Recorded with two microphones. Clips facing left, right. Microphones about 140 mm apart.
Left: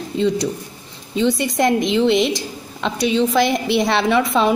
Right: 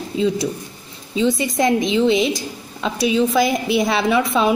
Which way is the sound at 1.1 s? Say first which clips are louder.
Even; centre (ahead or behind).